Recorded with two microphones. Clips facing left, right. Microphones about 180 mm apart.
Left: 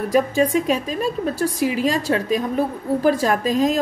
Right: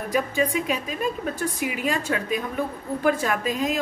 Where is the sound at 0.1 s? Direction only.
40° left (ahead or behind).